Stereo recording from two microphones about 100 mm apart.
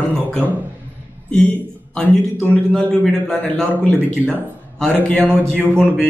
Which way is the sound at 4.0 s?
20° right (ahead or behind).